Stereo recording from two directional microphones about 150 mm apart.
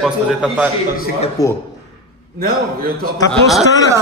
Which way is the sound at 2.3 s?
90° right.